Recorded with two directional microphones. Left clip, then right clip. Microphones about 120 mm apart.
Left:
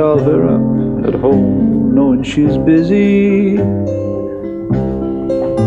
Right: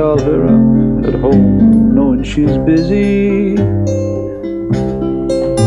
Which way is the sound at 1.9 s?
5° left (ahead or behind).